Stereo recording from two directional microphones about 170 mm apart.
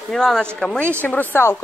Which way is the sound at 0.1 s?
5° left (ahead or behind).